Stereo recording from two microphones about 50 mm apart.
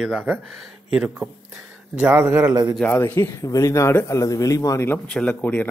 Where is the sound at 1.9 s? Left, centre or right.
Right.